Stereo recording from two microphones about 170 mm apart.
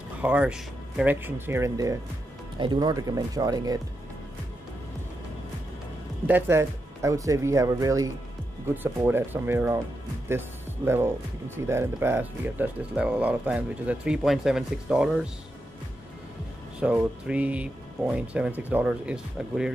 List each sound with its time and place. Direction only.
0.2 s speech: 5° right (ahead or behind)
6.2 s speech: 10° right (ahead or behind)
11.5 s speech: 15° right (ahead or behind)
16.8 s speech: 5° right (ahead or behind)